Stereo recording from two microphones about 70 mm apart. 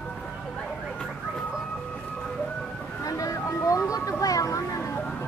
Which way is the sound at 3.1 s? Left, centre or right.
Left.